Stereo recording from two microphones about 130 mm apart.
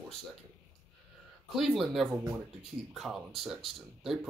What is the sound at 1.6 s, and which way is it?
Speech, centre (ahead or behind).